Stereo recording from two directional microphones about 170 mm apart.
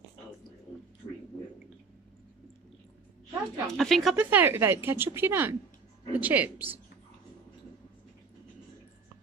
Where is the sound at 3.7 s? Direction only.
Centre (ahead or behind).